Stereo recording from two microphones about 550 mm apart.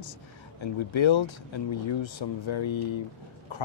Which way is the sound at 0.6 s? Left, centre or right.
Left.